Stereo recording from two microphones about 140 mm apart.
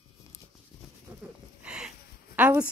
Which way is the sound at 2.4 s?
10° right (ahead or behind).